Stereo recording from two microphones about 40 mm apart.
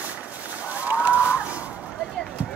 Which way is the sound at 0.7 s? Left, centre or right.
Right.